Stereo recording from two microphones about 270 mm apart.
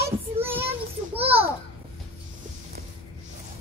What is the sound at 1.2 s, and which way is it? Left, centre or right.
Speech, right.